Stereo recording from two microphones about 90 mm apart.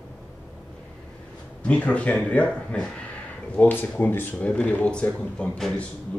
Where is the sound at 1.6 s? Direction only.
15° left (ahead or behind).